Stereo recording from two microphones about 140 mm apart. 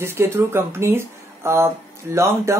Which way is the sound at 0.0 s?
20° right (ahead or behind).